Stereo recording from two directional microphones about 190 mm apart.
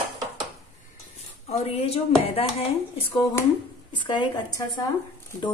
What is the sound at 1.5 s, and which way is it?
Speech, 30° left (ahead or behind).